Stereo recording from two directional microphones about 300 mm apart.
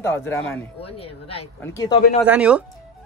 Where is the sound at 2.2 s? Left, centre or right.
Centre.